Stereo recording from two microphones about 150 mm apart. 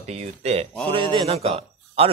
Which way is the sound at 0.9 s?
35° right (ahead or behind).